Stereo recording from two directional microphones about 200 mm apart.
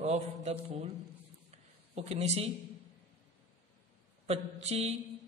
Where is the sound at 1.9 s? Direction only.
30° right (ahead or behind).